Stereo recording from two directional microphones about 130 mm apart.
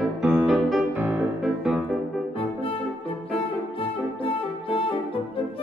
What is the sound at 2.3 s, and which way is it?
Music, 45° left (ahead or behind).